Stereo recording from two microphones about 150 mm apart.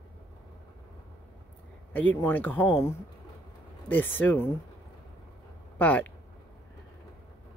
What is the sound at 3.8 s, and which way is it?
Speech, 10° left (ahead or behind).